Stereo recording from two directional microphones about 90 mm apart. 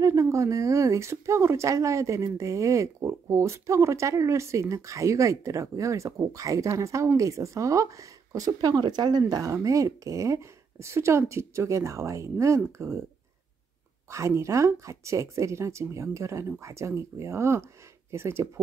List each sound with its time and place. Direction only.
0.0 s speech: 35° right (ahead or behind); by 9.2 s 50° right (ahead or behind)
9.3 s speech: 40° right (ahead or behind)
14.1 s speech: 35° right (ahead or behind)